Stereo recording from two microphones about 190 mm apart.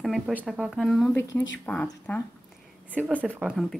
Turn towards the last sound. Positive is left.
turn(degrees=0)  # may be behind; listen again after turning